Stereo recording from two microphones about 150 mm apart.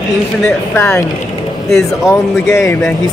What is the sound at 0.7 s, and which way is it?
Speech, 15° left (ahead or behind).